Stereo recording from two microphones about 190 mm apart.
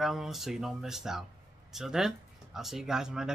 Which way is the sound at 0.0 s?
Centre (ahead or behind).